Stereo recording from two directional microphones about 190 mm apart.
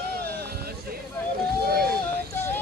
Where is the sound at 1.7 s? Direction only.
55° right (ahead or behind).